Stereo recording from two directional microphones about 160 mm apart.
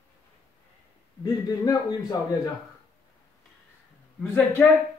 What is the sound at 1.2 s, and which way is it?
A man's voice, 25° left (ahead or behind).